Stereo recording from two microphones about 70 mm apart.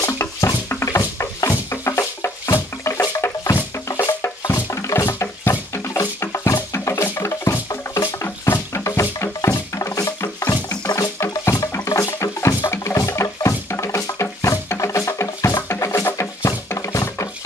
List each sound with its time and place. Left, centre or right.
0.0 s music: left
11.1 s music: left